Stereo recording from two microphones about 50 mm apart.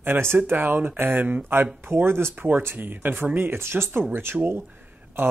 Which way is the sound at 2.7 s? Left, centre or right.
Right.